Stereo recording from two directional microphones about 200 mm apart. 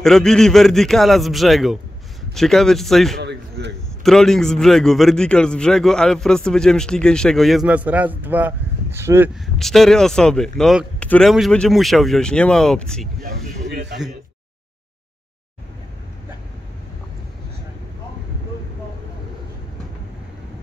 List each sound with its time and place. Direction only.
0.0 s a man's voice: 5° left (ahead or behind)
3.2 s a sound: 60° right (ahead or behind)
4.0 s a man's voice: centre (ahead or behind)
9.6 s a man's voice: centre (ahead or behind)
13.2 s vehicle: 55° right (ahead or behind)